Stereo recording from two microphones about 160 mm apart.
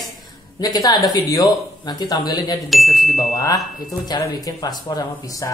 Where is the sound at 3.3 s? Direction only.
20° left (ahead or behind).